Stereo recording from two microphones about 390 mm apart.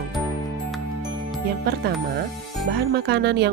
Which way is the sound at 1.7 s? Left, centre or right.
Right.